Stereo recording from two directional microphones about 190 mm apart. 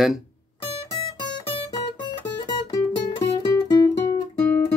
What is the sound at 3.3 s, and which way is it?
Guitar, 25° left (ahead or behind).